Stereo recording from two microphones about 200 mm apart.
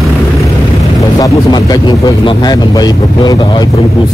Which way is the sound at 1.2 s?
20° left (ahead or behind).